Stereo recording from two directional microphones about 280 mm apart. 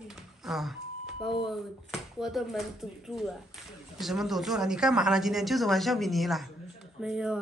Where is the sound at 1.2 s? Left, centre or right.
Centre.